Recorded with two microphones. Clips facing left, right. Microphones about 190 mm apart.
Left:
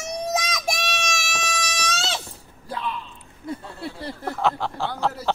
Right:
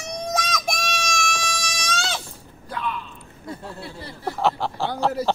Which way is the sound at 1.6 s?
5° left (ahead or behind).